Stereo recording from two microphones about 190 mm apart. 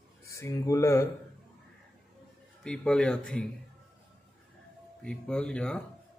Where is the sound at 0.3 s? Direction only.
15° left (ahead or behind).